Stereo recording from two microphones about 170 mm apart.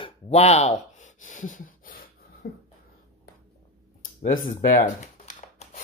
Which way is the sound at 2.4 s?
65° left (ahead or behind).